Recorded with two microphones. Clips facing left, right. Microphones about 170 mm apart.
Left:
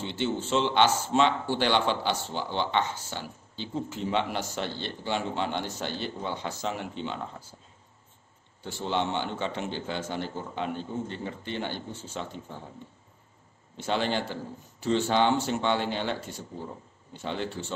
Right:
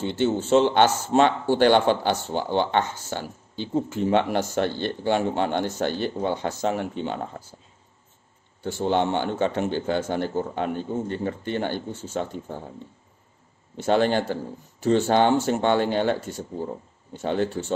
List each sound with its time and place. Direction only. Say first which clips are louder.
0.0 s speech: right 7 dB; 45° right (ahead or behind)
8.6 s speech: right 7 dB; 50° right (ahead or behind)
13.7 s speech: right 7 dB; 50° right (ahead or behind)